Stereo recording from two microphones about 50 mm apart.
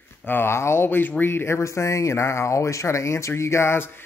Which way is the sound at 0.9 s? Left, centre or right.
Left.